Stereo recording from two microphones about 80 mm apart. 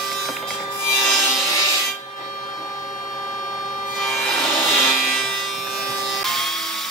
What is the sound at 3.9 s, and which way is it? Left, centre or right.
Wood, centre.